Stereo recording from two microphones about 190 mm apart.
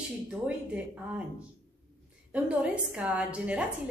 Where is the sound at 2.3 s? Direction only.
5° right (ahead or behind).